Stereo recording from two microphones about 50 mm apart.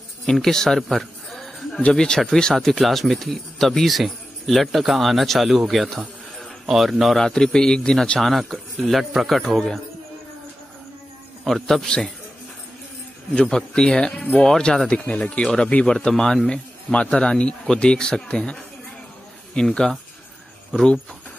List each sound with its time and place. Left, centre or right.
0.3 s a sound: centre
1.8 s a man's voice: centre
2.5 s speech: centre
7.2 s a man's voice: centre
11.4 s speech: centre
11.8 s a man's voice: centre
13.3 s a man's voice: centre
15.0 s a man's voice: left
16.9 s a man's voice: left; by 20.0 s centre